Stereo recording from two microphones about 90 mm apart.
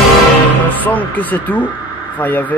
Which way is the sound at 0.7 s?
20° left (ahead or behind).